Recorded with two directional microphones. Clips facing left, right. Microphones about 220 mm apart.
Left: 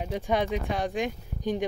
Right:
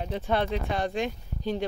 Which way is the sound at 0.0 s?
10° left (ahead or behind).